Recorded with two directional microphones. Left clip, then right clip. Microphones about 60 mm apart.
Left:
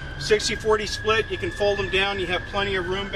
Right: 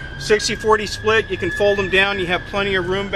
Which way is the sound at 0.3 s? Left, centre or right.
Right.